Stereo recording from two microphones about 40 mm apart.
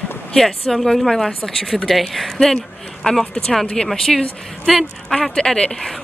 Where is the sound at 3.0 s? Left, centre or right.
Centre.